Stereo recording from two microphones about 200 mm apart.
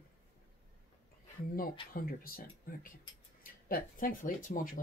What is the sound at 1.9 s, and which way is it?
Speech, 45° left (ahead or behind).